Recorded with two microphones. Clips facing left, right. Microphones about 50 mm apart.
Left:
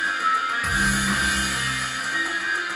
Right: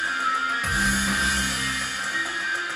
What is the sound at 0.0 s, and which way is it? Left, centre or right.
Music, centre.